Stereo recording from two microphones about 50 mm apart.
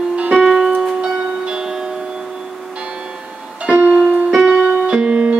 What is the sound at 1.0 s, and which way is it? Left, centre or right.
Music, centre.